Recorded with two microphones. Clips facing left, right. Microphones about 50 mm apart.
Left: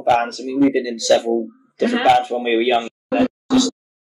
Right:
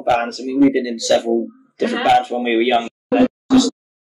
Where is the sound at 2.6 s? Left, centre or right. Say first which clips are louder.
Right 1 dB; centre.